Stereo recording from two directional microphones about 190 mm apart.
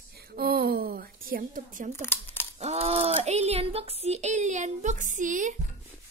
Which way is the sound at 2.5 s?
35° right (ahead or behind).